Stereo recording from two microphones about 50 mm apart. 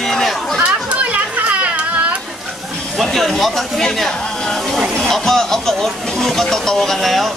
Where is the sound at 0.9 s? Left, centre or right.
Right.